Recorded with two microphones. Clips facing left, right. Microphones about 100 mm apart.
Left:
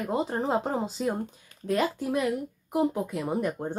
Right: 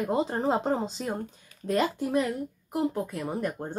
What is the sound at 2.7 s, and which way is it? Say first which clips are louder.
Speech: left 2 dB; 15° left (ahead or behind).